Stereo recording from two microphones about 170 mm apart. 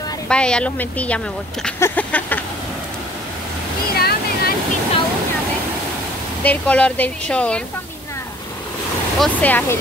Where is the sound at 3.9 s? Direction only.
65° left (ahead or behind).